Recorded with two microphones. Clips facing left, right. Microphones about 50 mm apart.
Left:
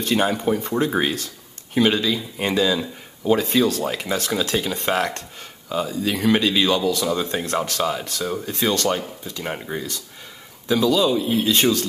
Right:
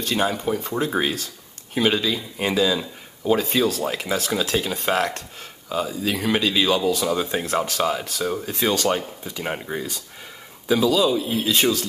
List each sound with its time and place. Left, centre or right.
0.0 s speech: centre
9.2 s speech: centre
9.5 s speech: centre